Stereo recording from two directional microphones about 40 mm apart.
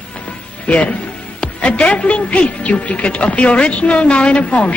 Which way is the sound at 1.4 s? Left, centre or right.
Left.